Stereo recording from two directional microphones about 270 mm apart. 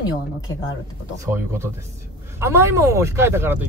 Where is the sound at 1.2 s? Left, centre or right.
Centre.